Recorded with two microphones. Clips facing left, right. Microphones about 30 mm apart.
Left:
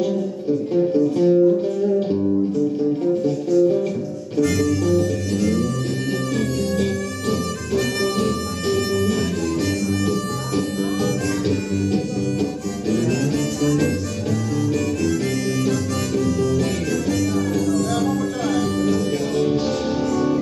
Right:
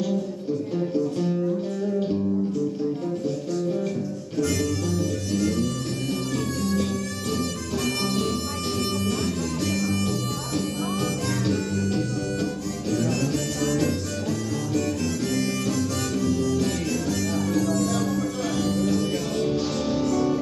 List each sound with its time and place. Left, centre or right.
1.1 s music: centre
4.4 s music: centre
11.4 s music: centre
13.7 s music: centre
16.3 s music: centre
17.9 s music: left
18.9 s music: centre
19.4 s music: centre